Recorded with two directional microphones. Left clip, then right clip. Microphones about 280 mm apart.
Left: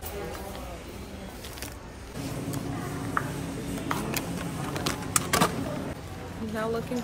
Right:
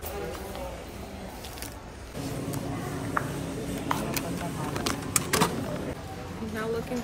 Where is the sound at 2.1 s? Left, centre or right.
Right.